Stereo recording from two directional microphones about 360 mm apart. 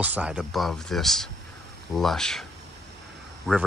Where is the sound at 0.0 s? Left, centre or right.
Centre.